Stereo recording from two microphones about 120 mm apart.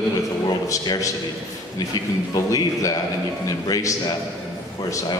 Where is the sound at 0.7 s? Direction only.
25° left (ahead or behind).